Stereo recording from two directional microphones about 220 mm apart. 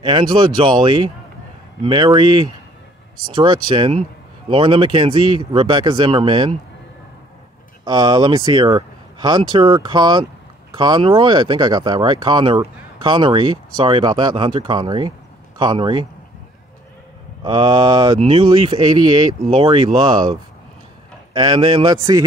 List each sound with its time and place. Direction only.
0.0 s speech: 20° right (ahead or behind)
7.8 s speech: 20° right (ahead or behind)
17.4 s speech: 20° right (ahead or behind)
21.3 s speech: 20° right (ahead or behind)